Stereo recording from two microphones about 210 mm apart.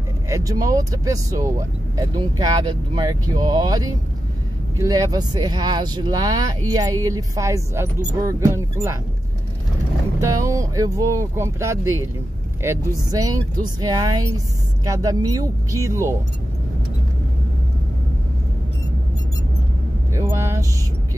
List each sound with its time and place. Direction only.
0.3 s speech: 15° right (ahead or behind)
10.2 s speech: 15° right (ahead or behind)
13.1 s speech: 15° right (ahead or behind)
20.2 s vehicle: 10° right (ahead or behind)